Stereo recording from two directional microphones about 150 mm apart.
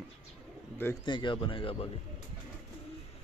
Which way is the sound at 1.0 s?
30° left (ahead or behind).